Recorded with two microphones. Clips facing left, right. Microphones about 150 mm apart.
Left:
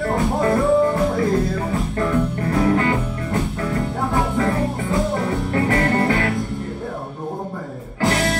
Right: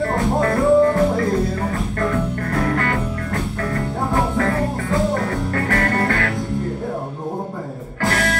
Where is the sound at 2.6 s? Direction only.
15° left (ahead or behind).